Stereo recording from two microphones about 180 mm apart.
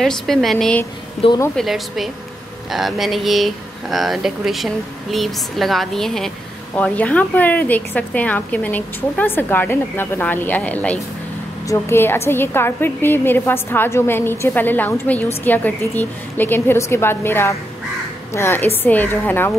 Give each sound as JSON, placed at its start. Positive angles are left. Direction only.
{"t": 0.0, "sound": "speech", "side_deg": 0}
{"t": 1.2, "sound": "speech", "side_deg": 30}
{"t": 1.6, "sound": "a woman's voice", "side_deg": 0}